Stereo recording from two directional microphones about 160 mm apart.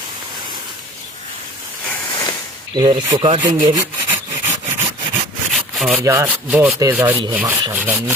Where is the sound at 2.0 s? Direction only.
25° left (ahead or behind).